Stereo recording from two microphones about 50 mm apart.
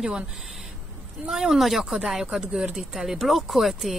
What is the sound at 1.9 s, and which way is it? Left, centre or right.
Speech, centre.